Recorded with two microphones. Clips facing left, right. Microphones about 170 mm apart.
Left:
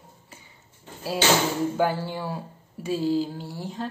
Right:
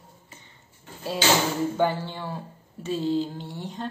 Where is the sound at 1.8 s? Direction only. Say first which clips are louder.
Even; 10° left (ahead or behind).